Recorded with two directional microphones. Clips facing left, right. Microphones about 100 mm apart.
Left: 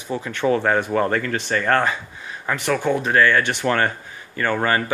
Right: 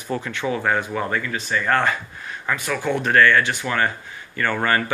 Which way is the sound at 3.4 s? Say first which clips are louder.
Left 2 dB; 50° left (ahead or behind).